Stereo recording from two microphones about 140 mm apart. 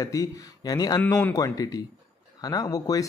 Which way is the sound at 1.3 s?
25° left (ahead or behind).